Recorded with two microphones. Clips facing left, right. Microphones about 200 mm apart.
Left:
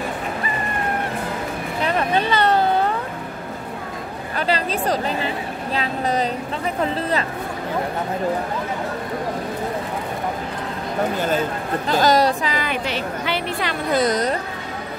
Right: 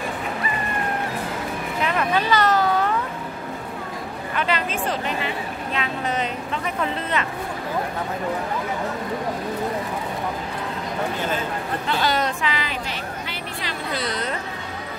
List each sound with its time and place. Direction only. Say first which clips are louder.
1.8 s a sound: left 2 dB; 35° left (ahead or behind)
4.4 s speech: left 3 dB; 35° left (ahead or behind)
11.9 s a woman's voice: left 7 dB; 40° left (ahead or behind)
12.6 s speech: left 6 dB; 75° left (ahead or behind); by 14.4 s 40° left (ahead or behind)